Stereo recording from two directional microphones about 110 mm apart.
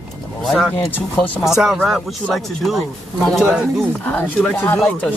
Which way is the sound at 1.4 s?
5° right (ahead or behind).